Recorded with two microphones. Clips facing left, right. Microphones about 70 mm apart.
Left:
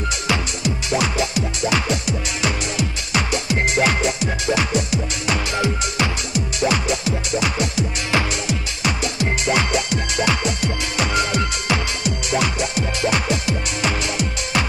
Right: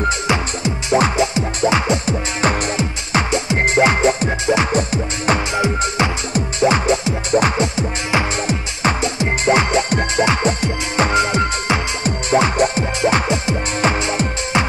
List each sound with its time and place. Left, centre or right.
0.3 s music: right
5.5 s music: right